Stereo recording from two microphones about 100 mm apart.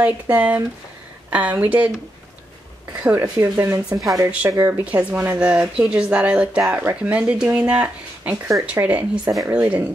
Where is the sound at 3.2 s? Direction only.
25° right (ahead or behind).